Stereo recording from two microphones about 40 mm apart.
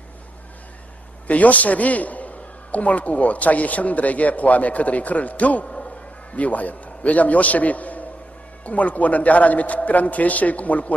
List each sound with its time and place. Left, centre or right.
1.2 s a man's voice: left